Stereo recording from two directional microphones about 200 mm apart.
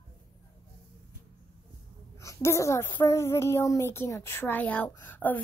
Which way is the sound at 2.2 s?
15° left (ahead or behind).